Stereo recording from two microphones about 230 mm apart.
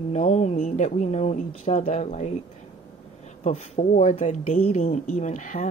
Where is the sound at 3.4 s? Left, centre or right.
Left.